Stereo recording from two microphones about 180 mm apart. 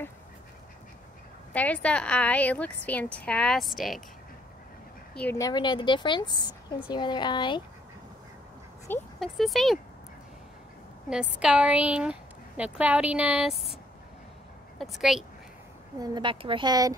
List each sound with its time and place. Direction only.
1.5 s a woman's voice: 10° left (ahead or behind)
5.1 s speech: 10° left (ahead or behind)
5.4 s a woman's voice: 25° left (ahead or behind)
8.9 s a woman's voice: 10° left (ahead or behind)
9.2 s speech: centre (ahead or behind)
11.1 s a woman's voice: 5° right (ahead or behind)
14.8 s speech: centre (ahead or behind)
16.0 s speech: 25° right (ahead or behind)